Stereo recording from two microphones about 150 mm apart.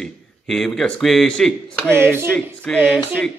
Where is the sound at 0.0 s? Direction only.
5° left (ahead or behind).